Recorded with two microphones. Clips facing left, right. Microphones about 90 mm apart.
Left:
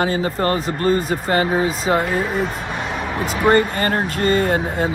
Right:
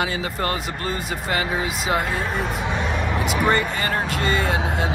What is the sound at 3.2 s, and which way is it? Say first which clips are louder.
Speech: left 6 dB; 40° left (ahead or behind).